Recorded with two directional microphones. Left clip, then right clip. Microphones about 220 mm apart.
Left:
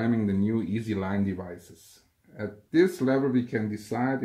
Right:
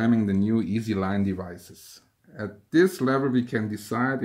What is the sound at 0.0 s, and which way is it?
Speech, 45° right (ahead or behind).